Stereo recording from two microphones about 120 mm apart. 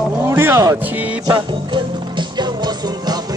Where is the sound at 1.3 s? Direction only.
40° right (ahead or behind).